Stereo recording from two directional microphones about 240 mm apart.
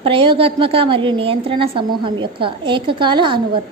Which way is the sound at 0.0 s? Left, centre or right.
Right.